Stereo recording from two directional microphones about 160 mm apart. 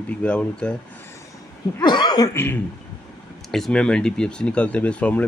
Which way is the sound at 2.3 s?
15° left (ahead or behind).